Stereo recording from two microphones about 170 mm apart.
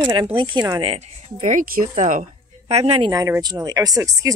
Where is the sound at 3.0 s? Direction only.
20° right (ahead or behind).